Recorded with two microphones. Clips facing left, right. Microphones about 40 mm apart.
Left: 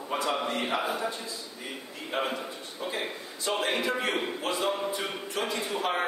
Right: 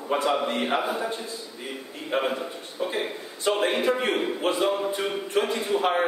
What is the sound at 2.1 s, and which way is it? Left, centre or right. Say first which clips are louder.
Speech: right 5 dB; centre.